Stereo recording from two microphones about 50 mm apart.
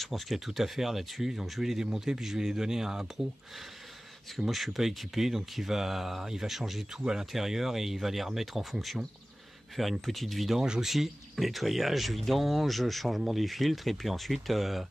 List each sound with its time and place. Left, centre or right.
0.0 s speech: centre
4.4 s speech: centre